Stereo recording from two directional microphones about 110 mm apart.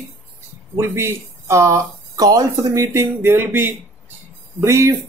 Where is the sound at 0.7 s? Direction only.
25° right (ahead or behind).